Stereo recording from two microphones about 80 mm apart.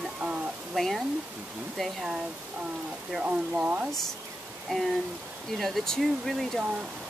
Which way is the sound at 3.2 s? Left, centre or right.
Centre.